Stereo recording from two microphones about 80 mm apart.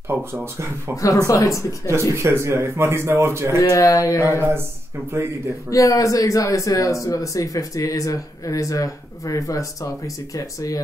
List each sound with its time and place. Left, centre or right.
0.1 s speech: right
1.0 s speech: left
2.1 s speech: right
3.5 s speech: left
4.2 s speech: right
5.7 s speech: left